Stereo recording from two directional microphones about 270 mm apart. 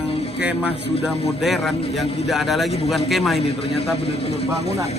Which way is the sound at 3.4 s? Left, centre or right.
Left.